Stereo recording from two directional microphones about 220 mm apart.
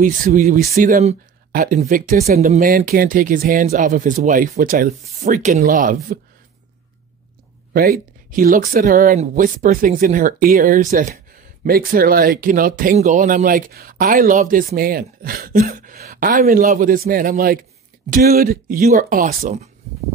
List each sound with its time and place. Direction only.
0.0 s speech: 40° right (ahead or behind)
7.7 s speech: 40° right (ahead or behind)